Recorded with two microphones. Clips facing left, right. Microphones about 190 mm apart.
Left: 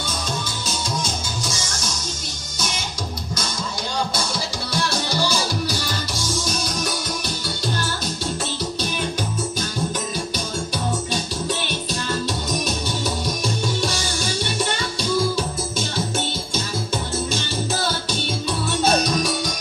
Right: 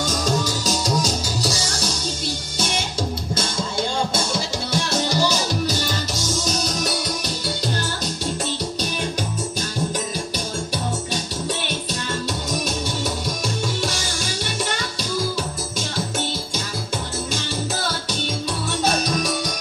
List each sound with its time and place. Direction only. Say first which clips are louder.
0.0 s music: right 6 dB; 40° right (ahead or behind)